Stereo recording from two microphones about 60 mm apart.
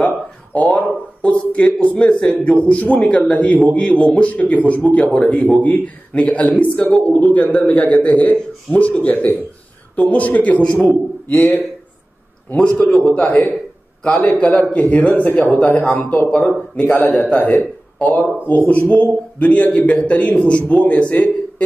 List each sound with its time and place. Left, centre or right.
0.7 s a man's voice: left
12.5 s a man's voice: centre